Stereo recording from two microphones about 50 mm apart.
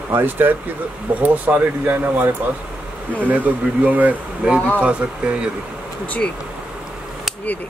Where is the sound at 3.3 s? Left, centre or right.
Right.